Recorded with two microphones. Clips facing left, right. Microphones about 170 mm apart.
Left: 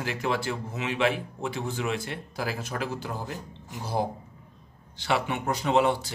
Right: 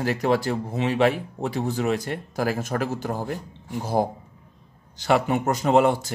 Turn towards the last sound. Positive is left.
turn(degrees=-45)  # may be behind; listen again after turning